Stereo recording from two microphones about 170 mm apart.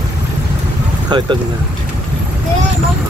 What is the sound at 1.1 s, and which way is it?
Speech, 30° right (ahead or behind).